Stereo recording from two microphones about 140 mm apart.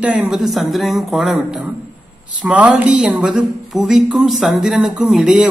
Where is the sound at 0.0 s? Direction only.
10° right (ahead or behind).